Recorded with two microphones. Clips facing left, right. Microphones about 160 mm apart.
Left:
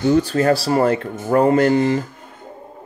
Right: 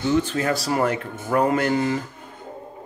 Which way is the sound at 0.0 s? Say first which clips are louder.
Left 6 dB; 40° left (ahead or behind).